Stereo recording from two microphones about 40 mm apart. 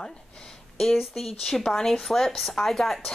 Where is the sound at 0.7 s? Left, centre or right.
Centre.